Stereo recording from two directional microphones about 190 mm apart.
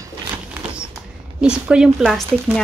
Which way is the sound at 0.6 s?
5° right (ahead or behind).